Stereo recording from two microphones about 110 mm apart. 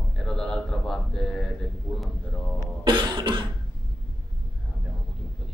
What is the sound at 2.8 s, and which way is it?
Cough, 40° right (ahead or behind).